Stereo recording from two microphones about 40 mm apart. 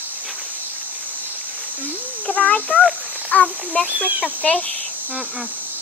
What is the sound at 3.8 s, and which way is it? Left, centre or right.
Speech, right.